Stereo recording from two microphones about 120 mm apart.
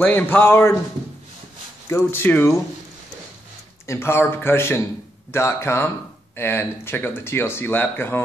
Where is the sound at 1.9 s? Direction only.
20° left (ahead or behind).